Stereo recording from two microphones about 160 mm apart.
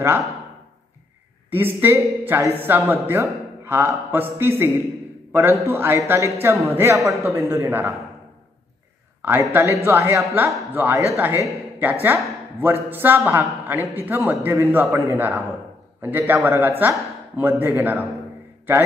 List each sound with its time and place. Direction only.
1.5 s a man's voice: 10° right (ahead or behind)
9.2 s a man's voice: 10° right (ahead or behind)